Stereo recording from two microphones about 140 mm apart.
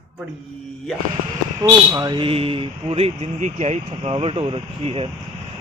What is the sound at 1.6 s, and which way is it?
Speech, 25° right (ahead or behind).